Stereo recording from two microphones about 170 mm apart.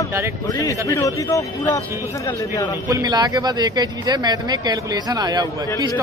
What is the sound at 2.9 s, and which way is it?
Speech, 20° right (ahead or behind).